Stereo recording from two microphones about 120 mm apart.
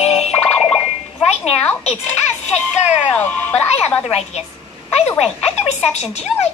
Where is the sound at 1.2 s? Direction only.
65° left (ahead or behind).